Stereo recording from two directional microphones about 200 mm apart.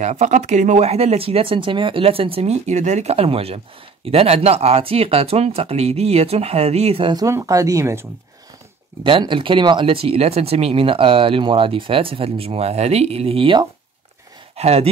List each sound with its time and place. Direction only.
0.0 s speech: 35° right (ahead or behind); by 8.1 s 10° right (ahead or behind)
9.0 s speech: 25° right (ahead or behind)